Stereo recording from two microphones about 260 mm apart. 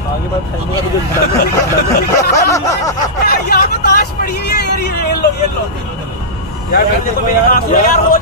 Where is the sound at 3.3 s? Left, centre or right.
Left.